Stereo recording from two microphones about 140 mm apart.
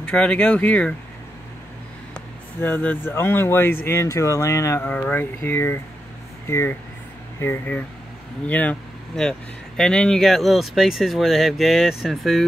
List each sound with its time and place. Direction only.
0.0 s speech: 5° left (ahead or behind)
2.6 s speech: 10° left (ahead or behind)